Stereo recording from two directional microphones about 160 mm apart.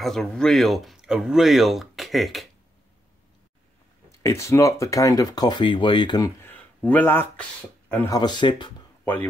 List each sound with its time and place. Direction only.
0.0 s speech: 5° left (ahead or behind)
4.2 s speech: 20° left (ahead or behind)
6.5 s a sound: 10° left (ahead or behind)
8.1 s speech: 25° left (ahead or behind)
9.0 s speech: 10° left (ahead or behind)